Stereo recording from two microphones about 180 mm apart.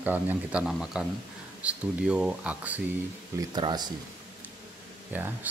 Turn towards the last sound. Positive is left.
turn(degrees=-10)  # may be behind; listen again after turning